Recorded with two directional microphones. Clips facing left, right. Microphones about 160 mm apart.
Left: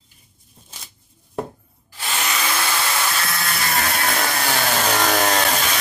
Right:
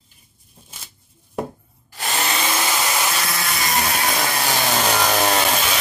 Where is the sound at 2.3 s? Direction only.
20° right (ahead or behind).